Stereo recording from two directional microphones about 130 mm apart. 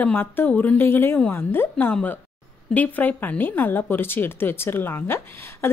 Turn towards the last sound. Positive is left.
turn(degrees=20)  # may be behind; listen again after turning